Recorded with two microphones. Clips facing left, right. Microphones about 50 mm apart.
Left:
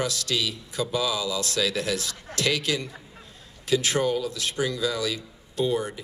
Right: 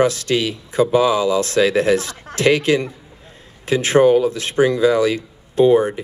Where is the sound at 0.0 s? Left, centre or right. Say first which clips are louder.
Right 10 dB; right.